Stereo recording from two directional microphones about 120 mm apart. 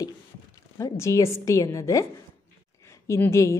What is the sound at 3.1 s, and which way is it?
Speech, 25° left (ahead or behind).